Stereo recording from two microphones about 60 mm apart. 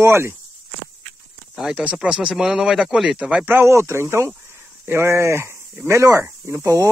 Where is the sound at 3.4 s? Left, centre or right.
Right.